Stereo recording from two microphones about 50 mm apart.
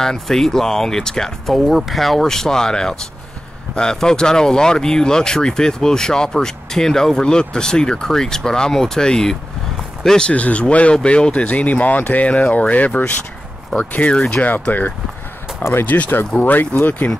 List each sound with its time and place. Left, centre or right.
0.0 s speech: centre
1.7 s speech: centre
10.3 s speech: left
14.7 s speech: left
17.0 s speech: centre